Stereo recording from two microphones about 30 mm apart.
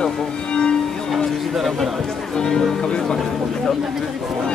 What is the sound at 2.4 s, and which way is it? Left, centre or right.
Speech, left.